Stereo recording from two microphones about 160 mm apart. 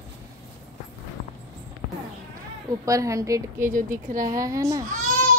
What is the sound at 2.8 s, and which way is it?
A woman's voice, 20° right (ahead or behind).